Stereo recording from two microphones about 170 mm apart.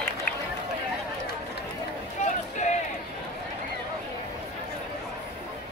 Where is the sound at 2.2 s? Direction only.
40° left (ahead or behind).